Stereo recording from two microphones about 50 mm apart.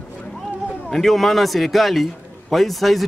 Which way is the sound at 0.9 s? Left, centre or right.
Centre.